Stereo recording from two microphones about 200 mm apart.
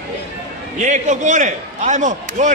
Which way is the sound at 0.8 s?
35° right (ahead or behind).